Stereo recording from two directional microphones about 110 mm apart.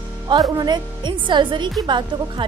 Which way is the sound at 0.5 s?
40° right (ahead or behind).